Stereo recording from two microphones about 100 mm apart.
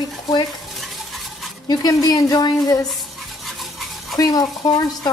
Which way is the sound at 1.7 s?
45° left (ahead or behind).